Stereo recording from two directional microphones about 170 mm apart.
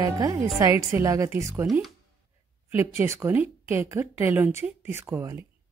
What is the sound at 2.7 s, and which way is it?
Speech, 15° right (ahead or behind).